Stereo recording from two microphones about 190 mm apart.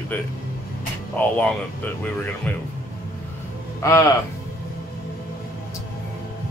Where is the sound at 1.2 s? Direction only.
5° left (ahead or behind).